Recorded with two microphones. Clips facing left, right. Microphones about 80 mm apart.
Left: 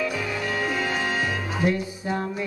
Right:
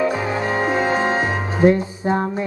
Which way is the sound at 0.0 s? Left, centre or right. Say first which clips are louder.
Right 7 dB; right.